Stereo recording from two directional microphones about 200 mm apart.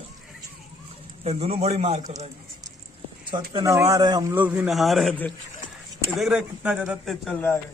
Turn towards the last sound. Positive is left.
turn(degrees=10)  # may be behind; listen again after turning